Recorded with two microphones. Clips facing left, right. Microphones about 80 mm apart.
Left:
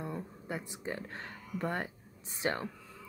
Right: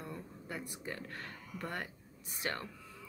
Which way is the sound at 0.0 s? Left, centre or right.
Left.